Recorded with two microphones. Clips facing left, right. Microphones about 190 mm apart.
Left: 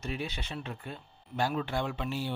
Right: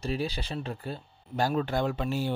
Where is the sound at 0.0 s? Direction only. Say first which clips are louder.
Right 5 dB; 35° right (ahead or behind).